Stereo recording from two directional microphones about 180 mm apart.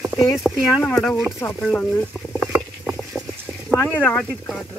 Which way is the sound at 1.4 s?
5° left (ahead or behind).